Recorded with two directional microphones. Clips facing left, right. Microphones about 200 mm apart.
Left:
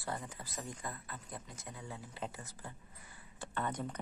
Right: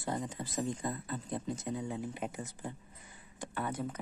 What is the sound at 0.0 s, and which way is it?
Speech, 20° right (ahead or behind).